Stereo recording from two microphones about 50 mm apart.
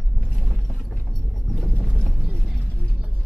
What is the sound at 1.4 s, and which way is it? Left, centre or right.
Boat, centre.